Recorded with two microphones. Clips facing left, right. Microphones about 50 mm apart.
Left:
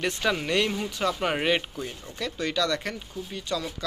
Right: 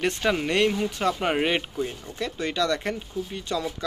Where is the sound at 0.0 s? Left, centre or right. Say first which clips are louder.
Right 2 dB; right.